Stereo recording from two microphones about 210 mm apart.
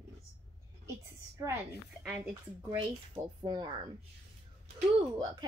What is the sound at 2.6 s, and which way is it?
Speech, 20° right (ahead or behind).